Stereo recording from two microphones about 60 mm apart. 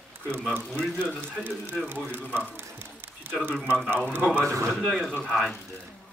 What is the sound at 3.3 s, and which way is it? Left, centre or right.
Speech, right.